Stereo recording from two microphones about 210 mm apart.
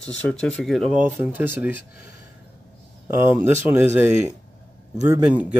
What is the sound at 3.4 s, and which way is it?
Speech, 10° right (ahead or behind).